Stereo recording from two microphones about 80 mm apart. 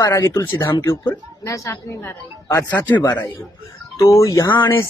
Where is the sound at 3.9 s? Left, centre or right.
Left.